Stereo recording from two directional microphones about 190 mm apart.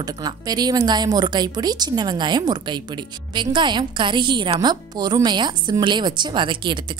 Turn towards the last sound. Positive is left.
turn(degrees=-25)  # may be behind; listen again after turning